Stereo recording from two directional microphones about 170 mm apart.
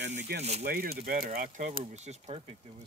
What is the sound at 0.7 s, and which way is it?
Speech, 65° right (ahead or behind).